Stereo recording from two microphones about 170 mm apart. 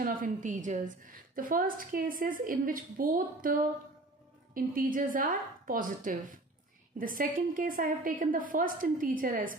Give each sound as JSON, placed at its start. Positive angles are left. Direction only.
{"t": 0.0, "sound": "a woman's voice", "side_deg": -55}
{"t": 4.6, "sound": "a woman's voice", "side_deg": -55}